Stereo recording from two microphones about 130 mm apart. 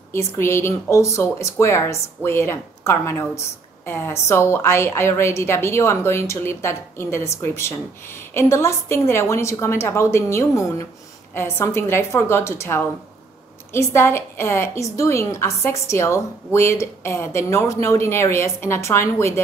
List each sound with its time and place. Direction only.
0.4 s a woman's voice: 20° left (ahead or behind)